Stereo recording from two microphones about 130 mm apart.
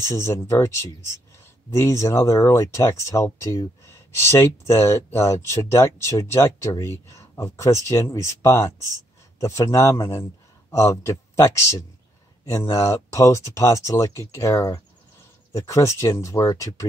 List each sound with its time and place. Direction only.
0.0 s speech: 20° left (ahead or behind)